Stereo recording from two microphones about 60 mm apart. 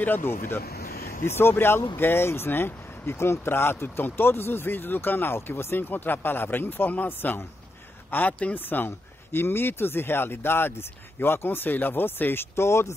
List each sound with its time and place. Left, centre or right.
0.0 s a man's voice: left